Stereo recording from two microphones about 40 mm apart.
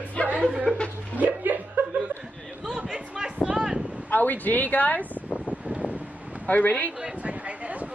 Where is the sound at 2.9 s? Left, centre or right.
Centre.